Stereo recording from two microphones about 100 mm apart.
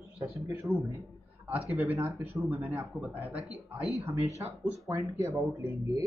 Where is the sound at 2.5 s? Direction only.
20° right (ahead or behind).